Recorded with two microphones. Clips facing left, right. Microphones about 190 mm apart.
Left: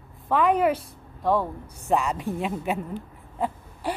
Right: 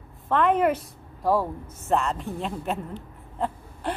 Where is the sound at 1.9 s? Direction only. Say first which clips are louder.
Left 1 dB; centre (ahead or behind).